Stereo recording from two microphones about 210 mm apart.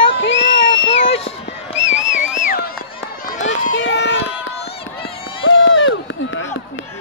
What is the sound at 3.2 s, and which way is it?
Run, 40° left (ahead or behind).